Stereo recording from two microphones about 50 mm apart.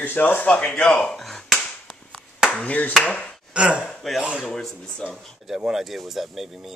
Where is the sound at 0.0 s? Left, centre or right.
Left.